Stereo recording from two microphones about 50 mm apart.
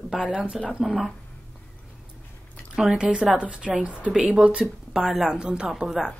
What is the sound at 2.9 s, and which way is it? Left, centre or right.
A woman's voice, right.